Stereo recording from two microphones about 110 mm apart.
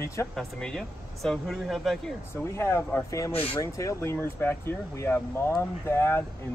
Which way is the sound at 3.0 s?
30° left (ahead or behind).